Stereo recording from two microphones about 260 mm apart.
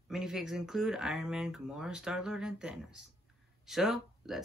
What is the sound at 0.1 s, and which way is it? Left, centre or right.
Speech, centre.